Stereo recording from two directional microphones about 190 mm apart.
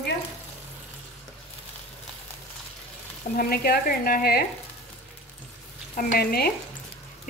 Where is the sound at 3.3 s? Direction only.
55° left (ahead or behind).